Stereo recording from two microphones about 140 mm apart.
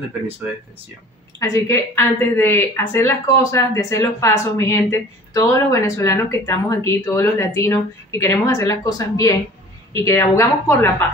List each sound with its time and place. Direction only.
1.4 s speech: 20° left (ahead or behind)